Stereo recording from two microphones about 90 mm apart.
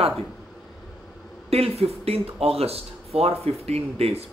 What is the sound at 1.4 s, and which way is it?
Speech, 90° right.